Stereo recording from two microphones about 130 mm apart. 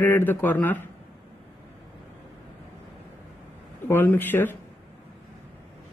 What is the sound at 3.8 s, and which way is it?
Speech, 15° left (ahead or behind).